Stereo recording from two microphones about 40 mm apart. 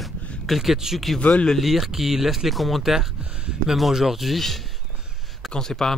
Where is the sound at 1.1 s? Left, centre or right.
Left.